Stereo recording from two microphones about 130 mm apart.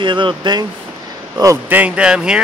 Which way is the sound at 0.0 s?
40° right (ahead or behind).